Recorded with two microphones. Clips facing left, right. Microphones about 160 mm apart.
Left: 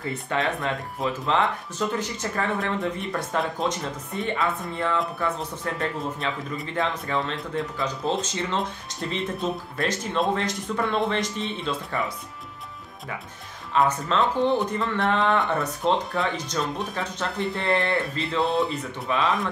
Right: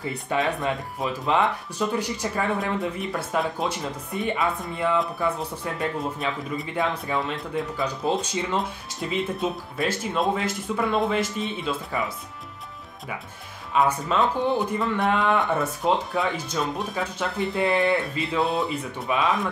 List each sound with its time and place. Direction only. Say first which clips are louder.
0.0 s speech: right 1 dB; 15° right (ahead or behind)
4.2 s speech: right 1 dB; 20° right (ahead or behind)
5.6 s speech: right 1 dB; 5° right (ahead or behind)
13.7 s speech: even; 10° right (ahead or behind)